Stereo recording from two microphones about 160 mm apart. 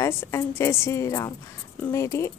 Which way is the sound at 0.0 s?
15° left (ahead or behind).